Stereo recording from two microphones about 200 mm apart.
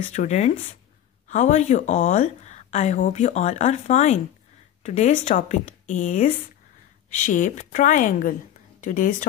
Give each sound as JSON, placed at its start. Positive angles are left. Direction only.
{"t": 0.1, "sound": "a woman's voice", "side_deg": 35}